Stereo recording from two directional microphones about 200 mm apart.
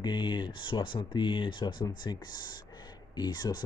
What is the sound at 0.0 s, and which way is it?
Speech, 20° left (ahead or behind).